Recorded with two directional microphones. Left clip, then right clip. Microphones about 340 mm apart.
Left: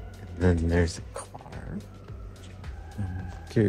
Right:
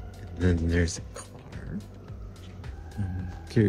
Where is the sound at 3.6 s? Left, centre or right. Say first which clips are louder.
Even; centre.